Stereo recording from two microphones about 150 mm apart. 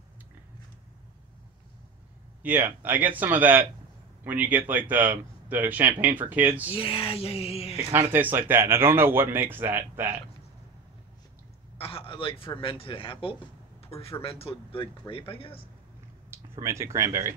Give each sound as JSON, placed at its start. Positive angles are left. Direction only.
{"t": 2.4, "sound": "speech", "side_deg": -10}
{"t": 6.7, "sound": "speech", "side_deg": 40}
{"t": 7.7, "sound": "speech", "side_deg": -15}
{"t": 11.8, "sound": "speech", "side_deg": 35}
{"t": 16.3, "sound": "speech", "side_deg": -20}